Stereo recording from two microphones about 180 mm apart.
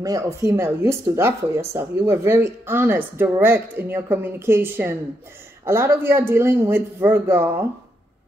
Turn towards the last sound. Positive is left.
turn(degrees=-15)  # may be behind; listen again after turning